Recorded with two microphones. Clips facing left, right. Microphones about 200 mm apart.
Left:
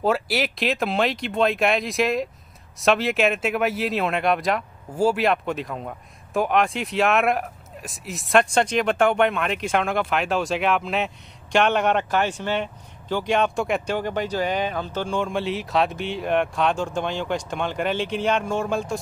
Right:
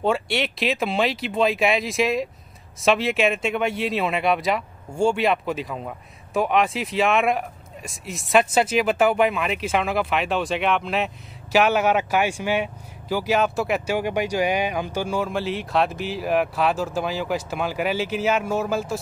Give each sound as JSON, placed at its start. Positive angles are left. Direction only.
{"t": 0.0, "sound": "speech", "side_deg": 0}